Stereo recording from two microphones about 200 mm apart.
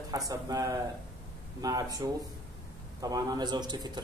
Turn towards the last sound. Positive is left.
turn(degrees=-20)  # may be behind; listen again after turning